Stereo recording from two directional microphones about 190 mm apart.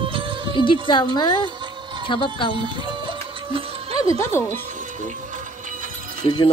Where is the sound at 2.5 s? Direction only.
25° right (ahead or behind).